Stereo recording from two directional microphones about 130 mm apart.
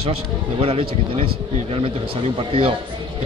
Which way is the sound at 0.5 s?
45° right (ahead or behind).